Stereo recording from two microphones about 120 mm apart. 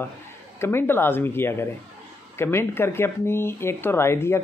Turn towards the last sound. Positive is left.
turn(degrees=20)  # may be behind; listen again after turning